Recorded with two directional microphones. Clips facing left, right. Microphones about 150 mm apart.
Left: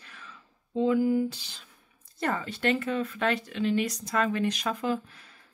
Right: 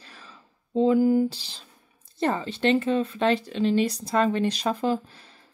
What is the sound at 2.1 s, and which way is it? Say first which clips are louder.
Speech: right 5 dB; 25° right (ahead or behind).